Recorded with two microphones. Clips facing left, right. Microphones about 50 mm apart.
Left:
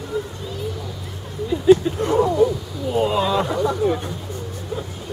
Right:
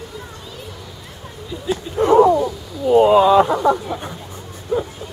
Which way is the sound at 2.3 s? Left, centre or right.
Centre.